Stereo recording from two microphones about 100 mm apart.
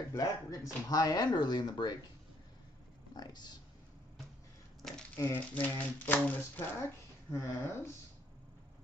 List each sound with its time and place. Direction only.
0.1 s speech: 35° left (ahead or behind)
3.2 s speech: 45° left (ahead or behind)
5.1 s speech: 20° left (ahead or behind)
6.8 s speech: 30° left (ahead or behind)